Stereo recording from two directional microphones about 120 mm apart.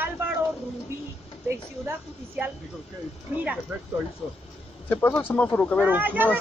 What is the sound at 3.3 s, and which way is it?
Speech, 15° right (ahead or behind).